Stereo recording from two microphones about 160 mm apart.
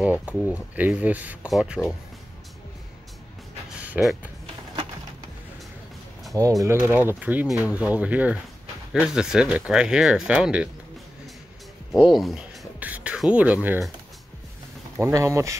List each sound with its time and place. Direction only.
0.3 s speech: 5° right (ahead or behind)
3.8 s speech: 5° right (ahead or behind)
6.6 s speech: 15° right (ahead or behind)
11.9 s speech: centre (ahead or behind)
15.0 s speech: 20° right (ahead or behind)